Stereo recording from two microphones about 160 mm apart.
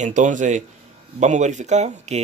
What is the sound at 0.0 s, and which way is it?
Speech, 50° right (ahead or behind).